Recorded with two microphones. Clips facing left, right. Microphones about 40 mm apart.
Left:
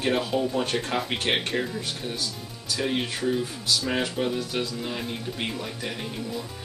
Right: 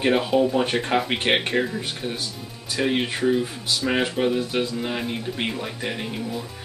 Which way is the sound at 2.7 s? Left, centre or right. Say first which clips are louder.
Right 4 dB; right.